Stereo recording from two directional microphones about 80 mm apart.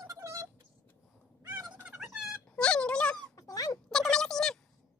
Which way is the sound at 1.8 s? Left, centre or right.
Centre.